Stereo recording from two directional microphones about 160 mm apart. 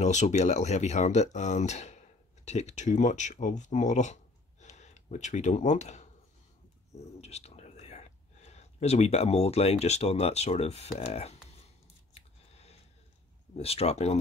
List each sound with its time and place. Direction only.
0.0 s speech: 45° left (ahead or behind)
7.2 s speech: 45° left (ahead or behind)
12.1 s chewing: 40° left (ahead or behind)
13.6 s speech: 40° left (ahead or behind)